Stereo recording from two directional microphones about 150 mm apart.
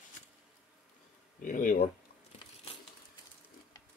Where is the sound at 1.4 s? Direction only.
65° left (ahead or behind).